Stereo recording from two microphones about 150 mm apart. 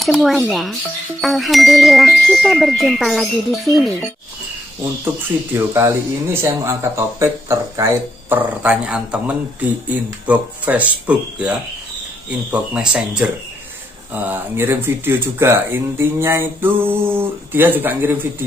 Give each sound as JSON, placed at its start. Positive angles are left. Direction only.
{"t": 0.0, "sound": "speech", "side_deg": 0}
{"t": 5.0, "sound": "speech", "side_deg": -15}